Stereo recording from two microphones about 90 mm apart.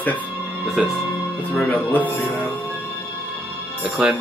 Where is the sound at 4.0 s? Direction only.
10° right (ahead or behind).